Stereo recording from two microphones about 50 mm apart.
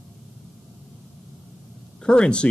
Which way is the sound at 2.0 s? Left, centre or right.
Centre.